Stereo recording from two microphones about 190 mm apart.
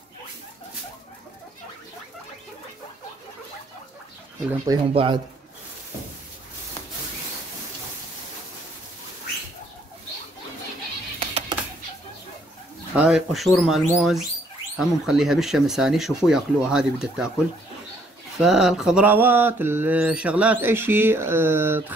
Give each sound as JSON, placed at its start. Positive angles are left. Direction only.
{"t": 4.9, "sound": "speech", "side_deg": -25}
{"t": 11.1, "sound": "music", "side_deg": -30}
{"t": 12.9, "sound": "speech", "side_deg": -5}
{"t": 18.4, "sound": "mantra", "side_deg": 0}